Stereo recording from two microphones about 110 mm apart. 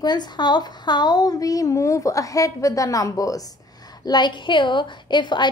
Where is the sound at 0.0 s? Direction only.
40° left (ahead or behind).